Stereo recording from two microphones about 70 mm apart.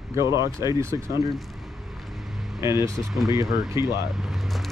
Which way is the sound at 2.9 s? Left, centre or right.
Centre.